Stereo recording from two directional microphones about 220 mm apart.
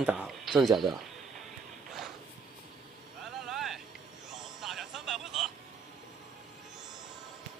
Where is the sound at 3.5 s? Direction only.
Centre (ahead or behind).